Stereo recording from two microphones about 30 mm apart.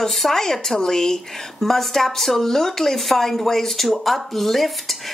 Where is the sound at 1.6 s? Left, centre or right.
Centre.